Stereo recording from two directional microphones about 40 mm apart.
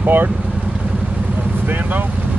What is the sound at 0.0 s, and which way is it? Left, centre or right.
Speech, right.